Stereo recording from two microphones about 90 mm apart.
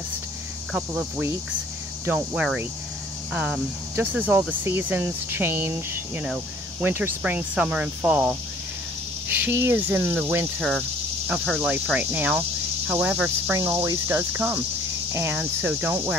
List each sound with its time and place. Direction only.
0.7 s cricket: 10° right (ahead or behind)
2.0 s speech: 25° right (ahead or behind)
3.3 s cricket: 10° right (ahead or behind)
4.1 s speech: 20° right (ahead or behind)
6.8 s cricket: 20° right (ahead or behind)
9.4 s speech: 25° right (ahead or behind)
13.6 s speech: 30° right (ahead or behind)